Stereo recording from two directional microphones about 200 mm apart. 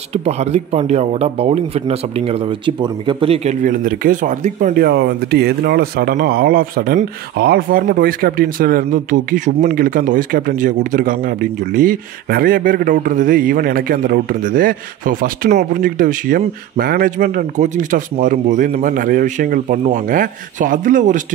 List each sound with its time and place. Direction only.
0.1 s a man's voice: 30° right (ahead or behind)